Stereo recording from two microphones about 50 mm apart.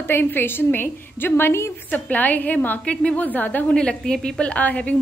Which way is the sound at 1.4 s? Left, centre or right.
Left.